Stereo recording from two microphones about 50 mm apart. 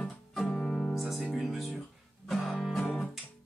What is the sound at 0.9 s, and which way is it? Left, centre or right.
Music, centre.